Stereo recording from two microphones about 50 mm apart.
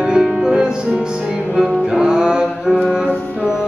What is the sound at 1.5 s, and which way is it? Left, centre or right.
Music, centre.